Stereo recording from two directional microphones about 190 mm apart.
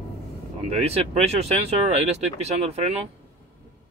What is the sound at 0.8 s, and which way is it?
Speech, 35° right (ahead or behind).